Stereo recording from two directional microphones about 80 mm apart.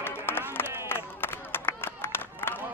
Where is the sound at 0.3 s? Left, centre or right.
Left.